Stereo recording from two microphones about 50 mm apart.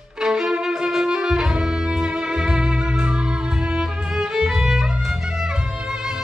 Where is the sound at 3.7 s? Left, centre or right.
Centre.